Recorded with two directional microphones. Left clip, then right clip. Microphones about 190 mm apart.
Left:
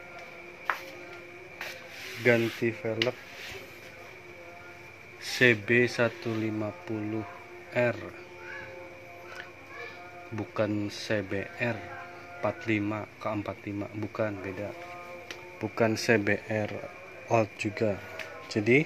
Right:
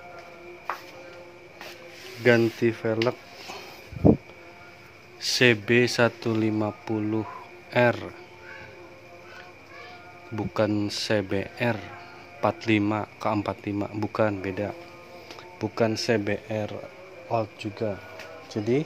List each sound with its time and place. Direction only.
2.2 s speech: 10° right (ahead or behind)
2.6 s speech: 30° right (ahead or behind)
5.2 s speech: 10° right (ahead or behind); by 8.1 s 25° right (ahead or behind)
10.3 s speech: 20° right (ahead or behind)
15.6 s speech: 5° right (ahead or behind)
17.3 s speech: 20° left (ahead or behind)